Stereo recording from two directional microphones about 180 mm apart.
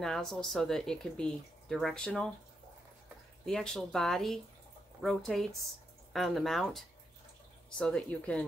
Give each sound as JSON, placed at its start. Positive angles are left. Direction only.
{"t": 0.0, "sound": "speech", "side_deg": 0}
{"t": 3.4, "sound": "a woman's voice", "side_deg": 0}